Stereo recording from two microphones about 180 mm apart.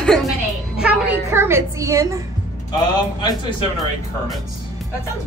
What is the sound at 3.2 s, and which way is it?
Speech, 25° left (ahead or behind).